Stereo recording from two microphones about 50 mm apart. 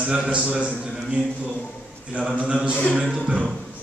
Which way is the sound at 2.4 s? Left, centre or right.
Right.